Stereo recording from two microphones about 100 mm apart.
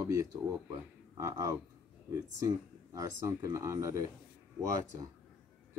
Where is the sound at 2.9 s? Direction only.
30° right (ahead or behind).